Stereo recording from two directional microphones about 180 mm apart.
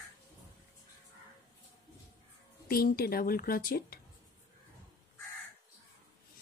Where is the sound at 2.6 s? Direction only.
55° left (ahead or behind).